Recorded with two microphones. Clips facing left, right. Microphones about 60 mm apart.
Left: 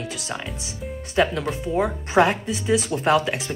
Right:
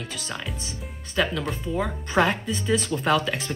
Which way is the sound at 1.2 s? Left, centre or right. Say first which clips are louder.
Left 4 dB; left.